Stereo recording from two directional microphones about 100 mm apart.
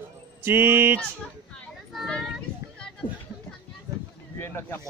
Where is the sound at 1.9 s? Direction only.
5° left (ahead or behind).